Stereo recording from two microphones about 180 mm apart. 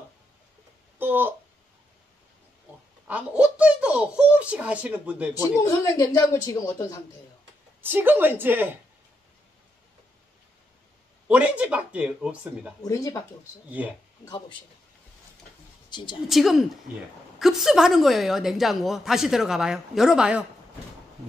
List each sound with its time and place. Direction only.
0.9 s a sound: 10° right (ahead or behind)
3.1 s speech: 5° right (ahead or behind)
5.7 s speech: 15° left (ahead or behind)
7.8 s speech: 10° right (ahead or behind)
11.2 s speech: 5° right (ahead or behind)
12.8 s speech: 20° left (ahead or behind)
13.7 s speech: 10° right (ahead or behind)
15.9 s a woman's voice: 25° left (ahead or behind)
16.3 s a woman's voice: centre (ahead or behind)